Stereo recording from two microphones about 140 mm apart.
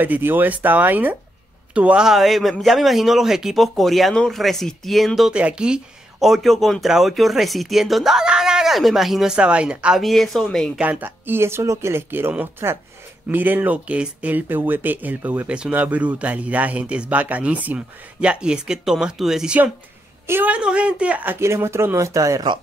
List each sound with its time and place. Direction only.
0.0 s speech: 15° right (ahead or behind); by 10.7 s 5° left (ahead or behind)
10.8 s speech: 10° right (ahead or behind)